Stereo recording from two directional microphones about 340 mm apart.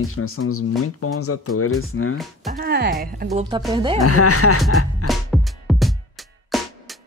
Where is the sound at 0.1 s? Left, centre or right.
Left.